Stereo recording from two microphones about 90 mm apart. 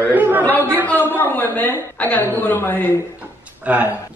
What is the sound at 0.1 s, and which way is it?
Chatter, 20° right (ahead or behind).